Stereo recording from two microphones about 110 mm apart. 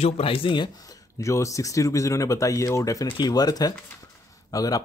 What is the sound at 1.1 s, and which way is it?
Speech, 30° left (ahead or behind).